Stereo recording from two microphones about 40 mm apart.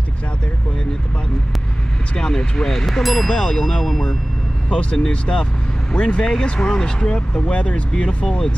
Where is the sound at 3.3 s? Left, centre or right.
Centre.